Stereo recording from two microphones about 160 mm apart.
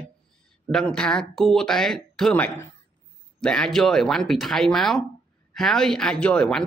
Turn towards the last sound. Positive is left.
turn(degrees=5)  # may be behind; listen again after turning